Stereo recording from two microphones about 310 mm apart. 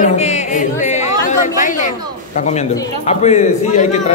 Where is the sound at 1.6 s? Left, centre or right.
Left.